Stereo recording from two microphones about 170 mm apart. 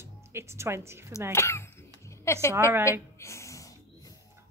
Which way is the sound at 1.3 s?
15° left (ahead or behind).